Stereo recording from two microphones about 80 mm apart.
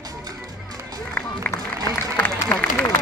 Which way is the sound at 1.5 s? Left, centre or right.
Left.